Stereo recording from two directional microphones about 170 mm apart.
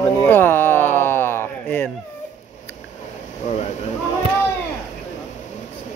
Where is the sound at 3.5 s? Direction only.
40° left (ahead or behind).